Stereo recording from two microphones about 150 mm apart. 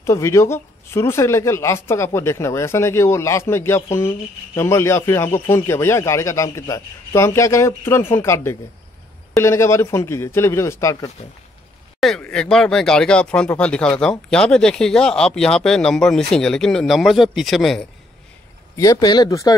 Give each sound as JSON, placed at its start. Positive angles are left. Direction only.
{"t": 0.0, "sound": "a man's voice", "side_deg": 20}
{"t": 12.2, "sound": "speech", "side_deg": 5}
{"t": 18.8, "sound": "speech", "side_deg": 25}